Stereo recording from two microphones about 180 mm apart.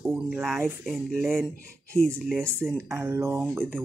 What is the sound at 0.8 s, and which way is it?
Speech, centre (ahead or behind).